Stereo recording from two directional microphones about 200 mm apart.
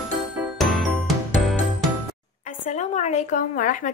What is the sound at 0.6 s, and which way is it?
Music, centre (ahead or behind).